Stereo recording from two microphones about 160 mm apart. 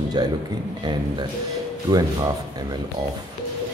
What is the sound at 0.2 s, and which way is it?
Speech, 25° right (ahead or behind).